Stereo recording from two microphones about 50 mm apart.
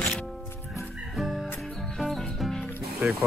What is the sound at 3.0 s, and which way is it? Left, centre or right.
Speech, right.